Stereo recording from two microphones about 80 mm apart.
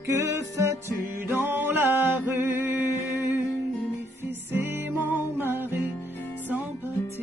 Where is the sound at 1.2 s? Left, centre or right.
Right.